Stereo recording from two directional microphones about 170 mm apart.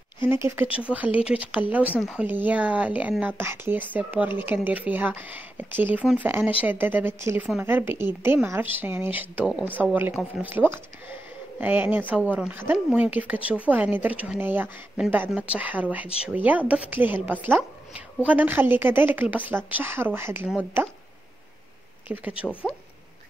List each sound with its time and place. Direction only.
0.3 s speech: 15° right (ahead or behind)
2.0 s speech: centre (ahead or behind)
2.2 s speech: 10° right (ahead or behind)
22.0 s speech: 10° right (ahead or behind)
22.5 s speech: 10° left (ahead or behind)